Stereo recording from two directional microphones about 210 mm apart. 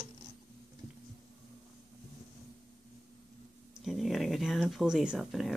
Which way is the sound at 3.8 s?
Centre (ahead or behind).